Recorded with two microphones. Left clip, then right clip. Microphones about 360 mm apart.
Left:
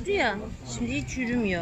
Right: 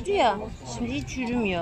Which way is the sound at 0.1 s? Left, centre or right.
Right.